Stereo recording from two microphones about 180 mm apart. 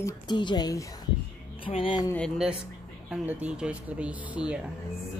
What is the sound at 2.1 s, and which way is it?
Speech, 5° left (ahead or behind).